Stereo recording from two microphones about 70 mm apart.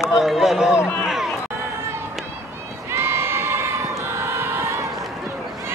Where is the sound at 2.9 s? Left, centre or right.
Right.